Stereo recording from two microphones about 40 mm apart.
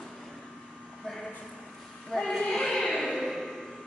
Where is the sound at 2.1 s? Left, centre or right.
Centre.